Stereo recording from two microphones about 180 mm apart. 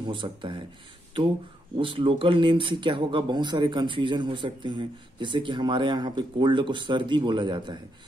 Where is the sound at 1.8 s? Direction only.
30° right (ahead or behind).